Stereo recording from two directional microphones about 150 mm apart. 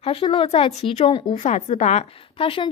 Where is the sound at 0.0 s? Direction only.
40° left (ahead or behind).